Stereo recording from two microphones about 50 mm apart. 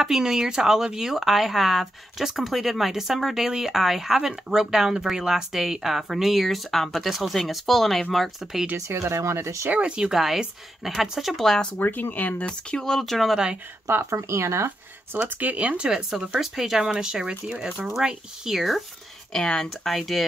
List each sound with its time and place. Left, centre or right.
0.0 s speech: centre
8.7 s speech: right
9.7 s speech: right
10.1 s speech: centre
11.4 s speech: centre
11.8 s speech: left
12.4 s speech: centre
14.1 s speech: right
15.2 s speech: right
15.9 s speech: centre
19.3 s speech: centre